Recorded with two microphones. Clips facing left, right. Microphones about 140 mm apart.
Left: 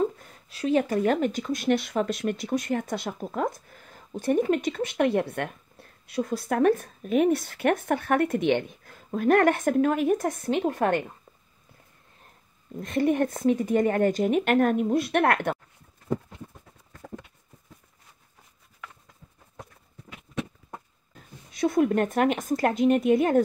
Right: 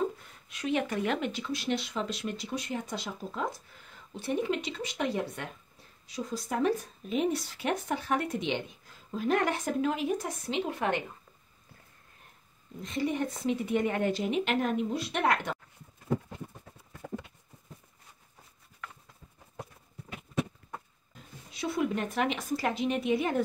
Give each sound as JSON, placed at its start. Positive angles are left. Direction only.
{"t": 0.2, "sound": "speech", "side_deg": 35}
{"t": 12.8, "sound": "speech", "side_deg": 55}
{"t": 21.5, "sound": "speech", "side_deg": 50}